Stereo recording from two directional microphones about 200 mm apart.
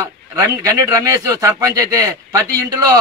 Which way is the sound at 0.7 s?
15° right (ahead or behind).